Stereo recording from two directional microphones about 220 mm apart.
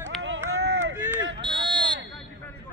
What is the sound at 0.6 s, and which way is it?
Run, 50° right (ahead or behind).